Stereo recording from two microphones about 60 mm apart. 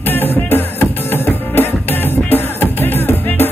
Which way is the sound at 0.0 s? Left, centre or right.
Left.